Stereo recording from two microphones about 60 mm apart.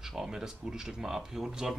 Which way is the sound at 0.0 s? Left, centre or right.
Centre.